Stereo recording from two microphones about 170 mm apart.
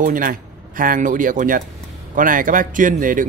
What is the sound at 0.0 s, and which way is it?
Speech, 55° right (ahead or behind).